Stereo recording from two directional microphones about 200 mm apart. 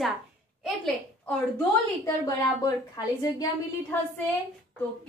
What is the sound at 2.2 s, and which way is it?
Speech, 20° left (ahead or behind).